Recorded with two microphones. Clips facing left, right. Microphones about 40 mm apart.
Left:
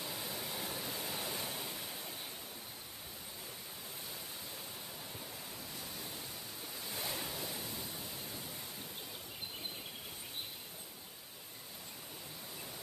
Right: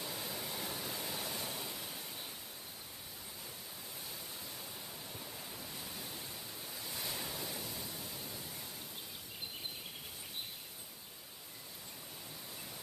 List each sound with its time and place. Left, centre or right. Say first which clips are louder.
0.0 s waterfall: even; centre
5.1 s waves: even; centre
5.9 s pink noise: even; centre